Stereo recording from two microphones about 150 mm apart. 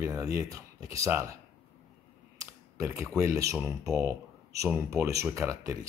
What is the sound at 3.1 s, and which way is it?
Speech, 20° right (ahead or behind).